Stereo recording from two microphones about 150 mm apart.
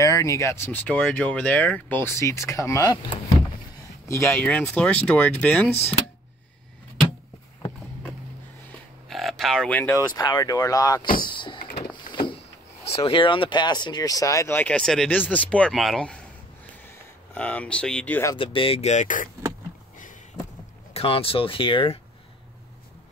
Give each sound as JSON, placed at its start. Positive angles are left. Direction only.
{"t": 0.0, "sound": "speech", "side_deg": 20}
{"t": 4.1, "sound": "speech", "side_deg": 20}
{"t": 9.1, "sound": "a sound", "side_deg": 0}
{"t": 9.9, "sound": "speech", "side_deg": 25}
{"t": 11.2, "sound": "power windows", "side_deg": 35}
{"t": 12.1, "sound": "vehicle", "side_deg": 35}
{"t": 12.9, "sound": "speech", "side_deg": 35}
{"t": 17.3, "sound": "speech", "side_deg": 10}
{"t": 18.3, "sound": "speech", "side_deg": 35}
{"t": 20.9, "sound": "speech", "side_deg": 40}